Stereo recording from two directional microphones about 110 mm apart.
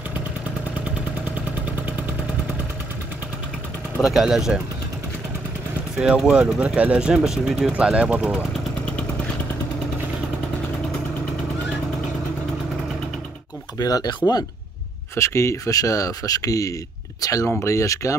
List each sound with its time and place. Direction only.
4.0 s speech: 5° right (ahead or behind)
5.9 s speech: 5° right (ahead or behind)
13.7 s speech: 35° left (ahead or behind)